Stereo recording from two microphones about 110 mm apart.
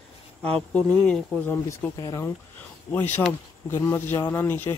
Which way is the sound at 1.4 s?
15° left (ahead or behind).